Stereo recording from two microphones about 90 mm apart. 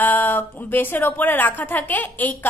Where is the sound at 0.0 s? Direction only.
20° left (ahead or behind).